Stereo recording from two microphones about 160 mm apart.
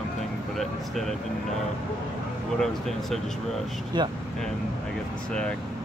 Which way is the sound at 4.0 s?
30° right (ahead or behind).